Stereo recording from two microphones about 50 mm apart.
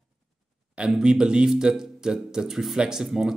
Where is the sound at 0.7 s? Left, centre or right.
Centre.